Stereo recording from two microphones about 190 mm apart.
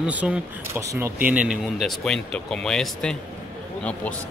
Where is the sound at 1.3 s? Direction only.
5° right (ahead or behind).